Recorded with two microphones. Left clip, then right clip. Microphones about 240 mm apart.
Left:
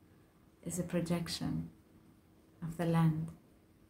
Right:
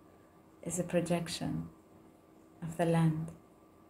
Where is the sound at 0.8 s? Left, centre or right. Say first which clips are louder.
Right 5 dB; centre.